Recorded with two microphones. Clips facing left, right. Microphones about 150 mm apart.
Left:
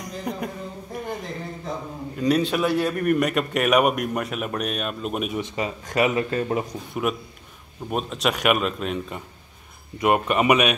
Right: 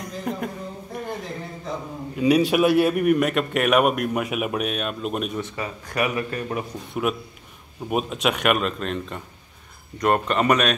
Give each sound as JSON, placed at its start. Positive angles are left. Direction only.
{"t": 0.0, "sound": "a sound", "side_deg": 0}
{"t": 2.1, "sound": "a man's voice", "side_deg": -10}
{"t": 5.4, "sound": "speech", "side_deg": 20}
{"t": 6.9, "sound": "a man's voice", "side_deg": 0}